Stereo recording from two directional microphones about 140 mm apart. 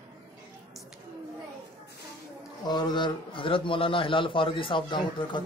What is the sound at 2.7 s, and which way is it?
A man's voice, 30° left (ahead or behind).